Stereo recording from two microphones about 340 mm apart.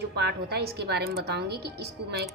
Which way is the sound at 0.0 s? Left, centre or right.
Right.